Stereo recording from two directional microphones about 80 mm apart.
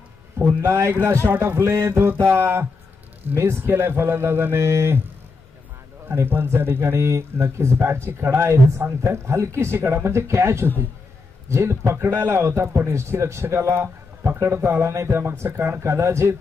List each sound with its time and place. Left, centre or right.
0.4 s a man's voice: right
6.0 s a man's voice: right